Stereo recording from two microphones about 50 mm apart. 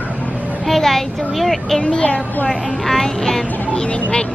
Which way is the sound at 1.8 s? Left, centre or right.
Left.